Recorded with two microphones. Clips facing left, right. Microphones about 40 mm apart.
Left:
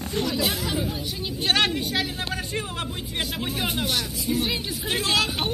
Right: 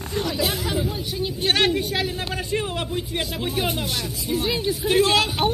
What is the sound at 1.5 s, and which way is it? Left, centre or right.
Speech, centre.